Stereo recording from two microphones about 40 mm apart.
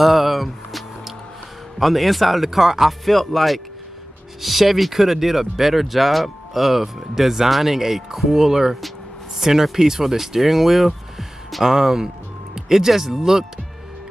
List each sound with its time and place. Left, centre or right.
0.0 s music: centre
1.8 s speech: centre
3.1 s speech: centre